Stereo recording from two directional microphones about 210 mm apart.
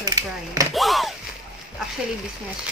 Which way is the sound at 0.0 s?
15° right (ahead or behind).